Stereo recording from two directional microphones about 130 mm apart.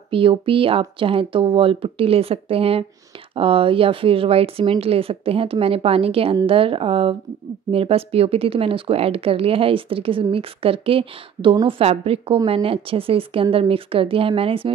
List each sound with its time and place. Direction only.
0.1 s speech: 45° right (ahead or behind)